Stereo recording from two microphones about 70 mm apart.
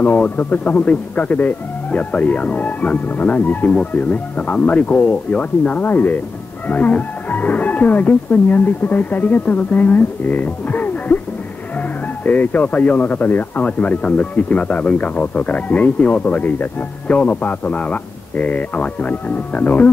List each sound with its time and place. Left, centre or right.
0.0 s speech: left
12.2 s speech: left